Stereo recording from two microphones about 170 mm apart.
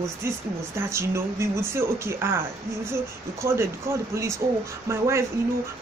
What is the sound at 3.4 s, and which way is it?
Speech, 15° right (ahead or behind).